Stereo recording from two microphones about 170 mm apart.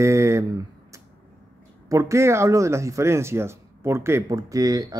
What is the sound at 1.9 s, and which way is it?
Speech, 15° right (ahead or behind).